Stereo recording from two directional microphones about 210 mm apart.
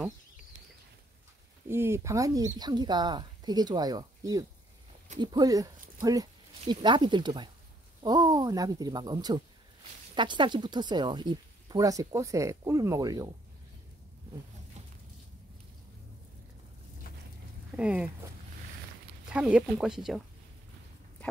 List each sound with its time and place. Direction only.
1.7 s speech: 10° right (ahead or behind)
17.7 s speech: 5° right (ahead or behind)
19.3 s speech: 5° right (ahead or behind)